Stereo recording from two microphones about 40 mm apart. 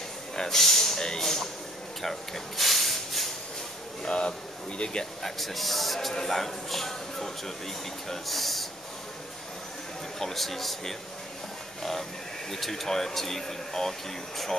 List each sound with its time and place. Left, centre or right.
0.4 s speech: centre
2.0 s a sound: centre
4.0 s speech: left
5.2 s a man's voice: centre
10.1 s a man's voice: centre
12.4 s speech: centre